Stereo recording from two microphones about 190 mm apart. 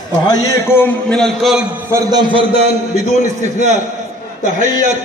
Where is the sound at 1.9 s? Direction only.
25° right (ahead or behind).